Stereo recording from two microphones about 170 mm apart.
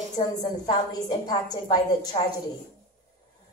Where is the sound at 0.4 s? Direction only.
20° left (ahead or behind).